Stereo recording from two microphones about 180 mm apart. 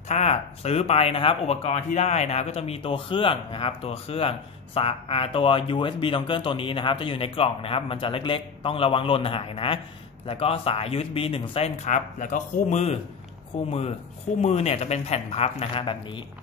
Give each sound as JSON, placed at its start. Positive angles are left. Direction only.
{"t": 0.1, "sound": "speech", "side_deg": 35}